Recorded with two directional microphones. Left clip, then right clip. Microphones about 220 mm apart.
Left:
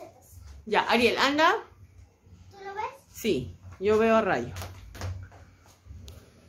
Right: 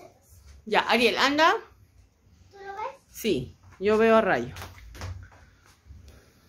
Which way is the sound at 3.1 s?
20° right (ahead or behind).